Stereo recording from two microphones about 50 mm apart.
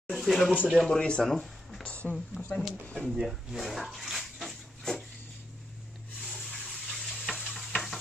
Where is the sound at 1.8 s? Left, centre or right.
Left.